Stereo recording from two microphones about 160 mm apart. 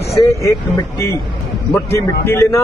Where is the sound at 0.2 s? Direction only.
20° left (ahead or behind).